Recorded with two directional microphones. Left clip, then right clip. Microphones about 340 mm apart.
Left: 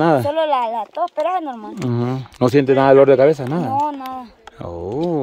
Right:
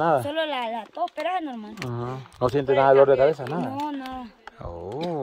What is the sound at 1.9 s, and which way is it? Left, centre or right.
Speech, left.